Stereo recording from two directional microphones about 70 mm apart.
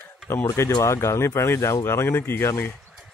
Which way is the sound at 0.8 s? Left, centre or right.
Left.